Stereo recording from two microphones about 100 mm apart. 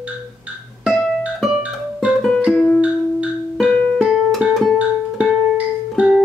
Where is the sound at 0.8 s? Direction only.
Centre (ahead or behind).